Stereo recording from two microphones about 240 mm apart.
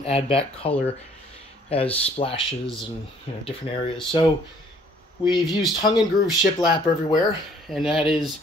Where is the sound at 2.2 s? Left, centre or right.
Left.